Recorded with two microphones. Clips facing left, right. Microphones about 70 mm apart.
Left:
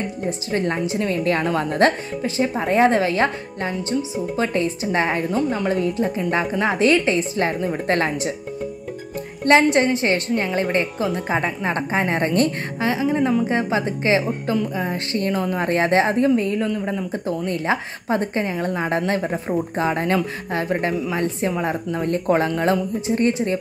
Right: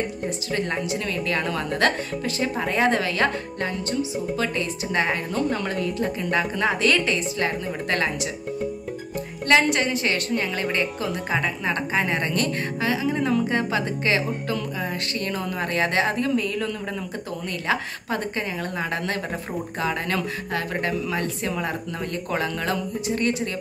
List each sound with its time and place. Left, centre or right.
0.5 s a woman's voice: left
5.3 s speech: centre; by 8.3 s left
9.5 s a woman's voice: left